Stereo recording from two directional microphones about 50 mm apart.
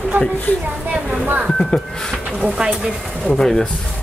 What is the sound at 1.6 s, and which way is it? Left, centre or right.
Speech, centre.